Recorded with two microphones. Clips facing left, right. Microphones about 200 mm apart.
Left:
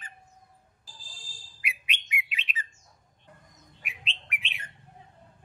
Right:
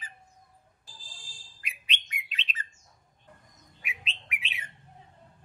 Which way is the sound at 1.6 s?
10° left (ahead or behind).